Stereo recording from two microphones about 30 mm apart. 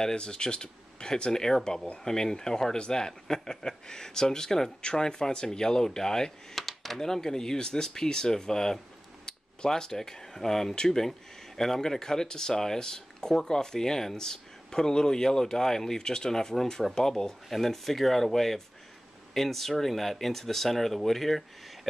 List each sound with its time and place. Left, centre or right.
0.0 s speech: left
6.5 s a sound: centre
7.0 s speech: centre
17.5 s speech: centre